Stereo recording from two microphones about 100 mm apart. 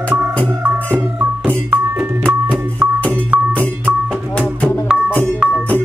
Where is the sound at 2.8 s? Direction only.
20° right (ahead or behind).